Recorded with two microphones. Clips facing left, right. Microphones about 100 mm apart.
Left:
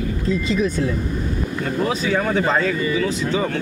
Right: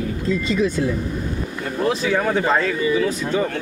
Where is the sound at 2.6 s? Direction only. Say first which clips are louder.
Right 1 dB; 50° right (ahead or behind).